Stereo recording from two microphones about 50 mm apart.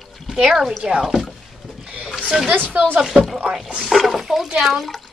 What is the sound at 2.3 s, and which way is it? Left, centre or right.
Speech, centre.